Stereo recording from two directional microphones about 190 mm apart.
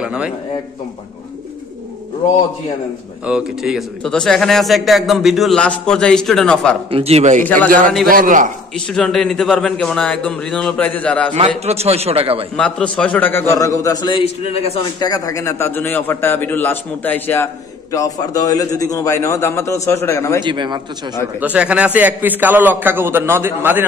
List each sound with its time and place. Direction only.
0.0 s a man's voice: 5° right (ahead or behind)
3.3 s a man's voice: 5° right (ahead or behind)
6.9 s a man's voice: 30° right (ahead or behind)
7.4 s a man's voice: 10° left (ahead or behind)
8.1 s a man's voice: 45° right (ahead or behind)
8.7 s a man's voice: 5° left (ahead or behind)
11.3 s a man's voice: 35° right (ahead or behind)
12.5 s a man's voice: 5° left (ahead or behind)
20.4 s speech: 25° right (ahead or behind)
21.4 s a man's voice: 5° right (ahead or behind)